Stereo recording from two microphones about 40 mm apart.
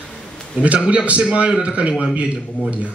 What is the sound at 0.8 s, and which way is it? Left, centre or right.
A man's voice, right.